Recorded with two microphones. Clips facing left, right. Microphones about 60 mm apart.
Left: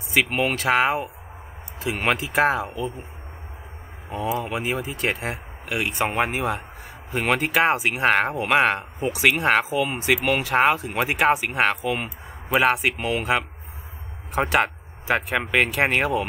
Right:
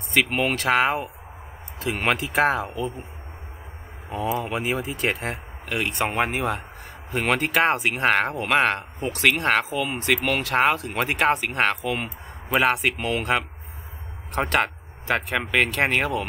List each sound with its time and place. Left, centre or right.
0.1 s speech: centre
4.4 s speech: centre